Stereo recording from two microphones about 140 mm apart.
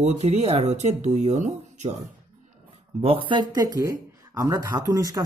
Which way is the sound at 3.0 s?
40° right (ahead or behind).